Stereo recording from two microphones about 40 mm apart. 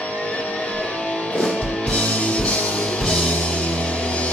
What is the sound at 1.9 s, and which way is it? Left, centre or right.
Music, left.